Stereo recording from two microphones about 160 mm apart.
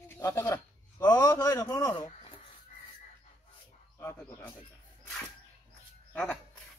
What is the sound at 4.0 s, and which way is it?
Bird, 15° left (ahead or behind).